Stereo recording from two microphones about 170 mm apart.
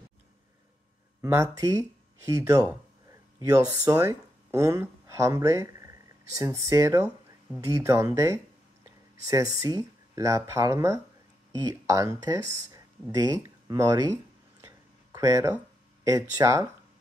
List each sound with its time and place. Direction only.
1.2 s speech: 20° right (ahead or behind)